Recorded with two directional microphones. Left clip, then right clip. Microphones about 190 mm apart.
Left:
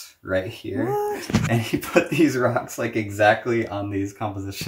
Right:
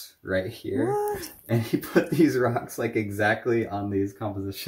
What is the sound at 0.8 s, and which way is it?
Speech, 10° right (ahead or behind).